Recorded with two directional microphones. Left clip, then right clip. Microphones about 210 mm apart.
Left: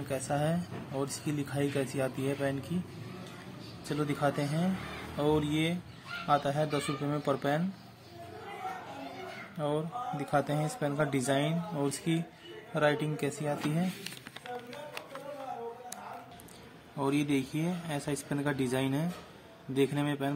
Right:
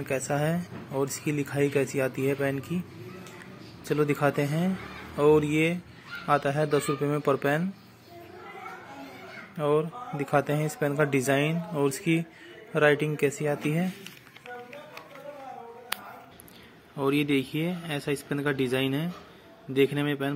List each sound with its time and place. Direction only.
0.1 s speech: 15° right (ahead or behind)
3.9 s a man's voice: 25° right (ahead or behind)
9.6 s a man's voice: 15° right (ahead or behind)
16.9 s speech: 10° right (ahead or behind)